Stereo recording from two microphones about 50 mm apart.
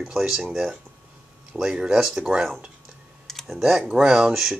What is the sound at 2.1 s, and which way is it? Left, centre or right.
Speech, right.